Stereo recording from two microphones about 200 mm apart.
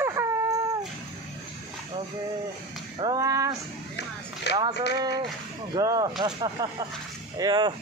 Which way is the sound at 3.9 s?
55° left (ahead or behind).